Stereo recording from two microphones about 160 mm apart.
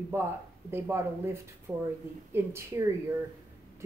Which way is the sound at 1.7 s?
5° right (ahead or behind).